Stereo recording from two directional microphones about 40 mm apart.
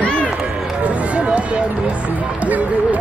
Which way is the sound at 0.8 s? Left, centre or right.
Right.